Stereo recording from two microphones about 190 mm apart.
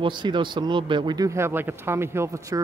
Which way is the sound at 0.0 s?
25° right (ahead or behind).